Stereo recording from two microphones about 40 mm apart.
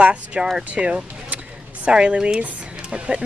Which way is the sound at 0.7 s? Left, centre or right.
Right.